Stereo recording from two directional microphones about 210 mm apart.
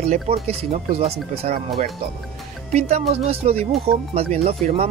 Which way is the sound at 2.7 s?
30° right (ahead or behind).